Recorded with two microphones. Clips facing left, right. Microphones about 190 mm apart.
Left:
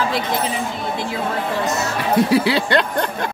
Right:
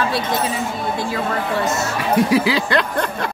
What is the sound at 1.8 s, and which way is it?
Speech, 30° left (ahead or behind).